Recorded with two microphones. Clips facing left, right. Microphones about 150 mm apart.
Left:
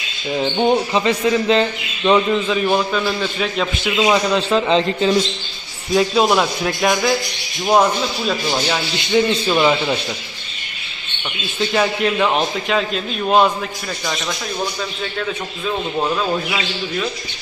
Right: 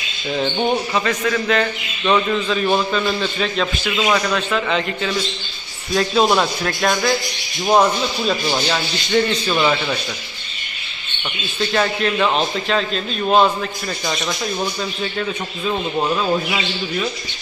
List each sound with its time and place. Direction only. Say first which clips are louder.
0.3 s a man's voice: left 3 dB; 10° left (ahead or behind)
0.9 s a man's voice: left 3 dB; 25° left (ahead or behind)
2.0 s a man's voice: left 2 dB; 10° left (ahead or behind)
3.7 s a man's voice: left 3 dB; 20° left (ahead or behind)
5.9 s a man's voice: left 1 dB; 5° left (ahead or behind)
11.7 s a man's voice: left 1 dB; 5° left (ahead or behind)